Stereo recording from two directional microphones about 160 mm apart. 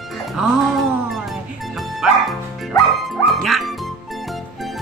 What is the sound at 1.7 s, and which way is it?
Music, centre (ahead or behind).